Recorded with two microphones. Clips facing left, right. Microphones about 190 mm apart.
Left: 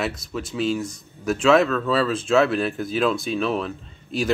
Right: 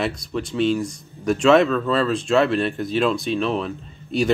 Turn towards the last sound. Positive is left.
turn(degrees=0)  # may be behind; listen again after turning